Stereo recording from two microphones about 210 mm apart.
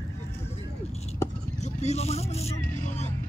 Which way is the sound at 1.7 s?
30° left (ahead or behind).